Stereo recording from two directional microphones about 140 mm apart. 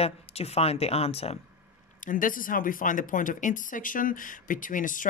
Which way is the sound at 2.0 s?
75° left (ahead or behind).